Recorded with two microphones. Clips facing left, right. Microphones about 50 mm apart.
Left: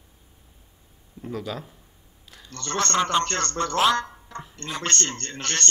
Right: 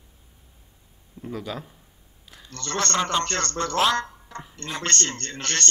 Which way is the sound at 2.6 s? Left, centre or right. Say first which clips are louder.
Left 1 dB; centre.